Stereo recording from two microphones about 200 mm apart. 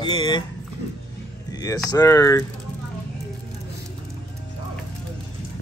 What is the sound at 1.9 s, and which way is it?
Speech, 20° left (ahead or behind).